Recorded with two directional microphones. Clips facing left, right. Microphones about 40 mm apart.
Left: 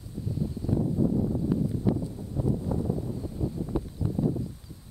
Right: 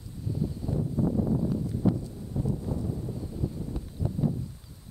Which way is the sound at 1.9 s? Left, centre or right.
Left.